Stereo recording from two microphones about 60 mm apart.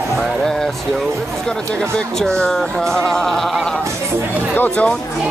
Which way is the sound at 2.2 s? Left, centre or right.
Centre.